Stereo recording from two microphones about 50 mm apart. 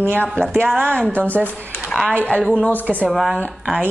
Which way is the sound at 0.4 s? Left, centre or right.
Right.